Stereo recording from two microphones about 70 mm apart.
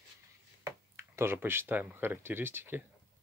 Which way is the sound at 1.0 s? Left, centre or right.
Right.